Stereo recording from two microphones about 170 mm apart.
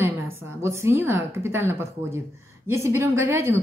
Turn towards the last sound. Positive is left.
turn(degrees=-15)  # may be behind; listen again after turning